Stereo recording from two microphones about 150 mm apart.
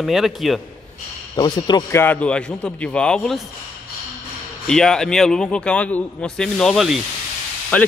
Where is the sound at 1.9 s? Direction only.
10° left (ahead or behind).